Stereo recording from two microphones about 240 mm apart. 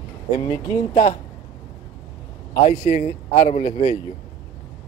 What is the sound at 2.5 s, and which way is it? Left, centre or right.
Speech, left.